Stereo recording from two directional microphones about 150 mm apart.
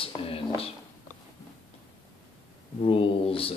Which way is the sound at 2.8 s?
40° left (ahead or behind).